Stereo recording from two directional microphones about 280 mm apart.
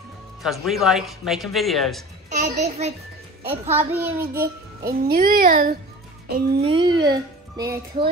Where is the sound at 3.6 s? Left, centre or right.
Centre.